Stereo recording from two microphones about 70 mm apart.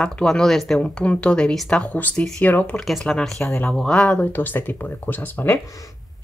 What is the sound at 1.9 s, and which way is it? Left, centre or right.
Speech, left.